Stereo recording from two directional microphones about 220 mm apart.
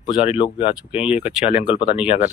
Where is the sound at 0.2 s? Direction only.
25° left (ahead or behind).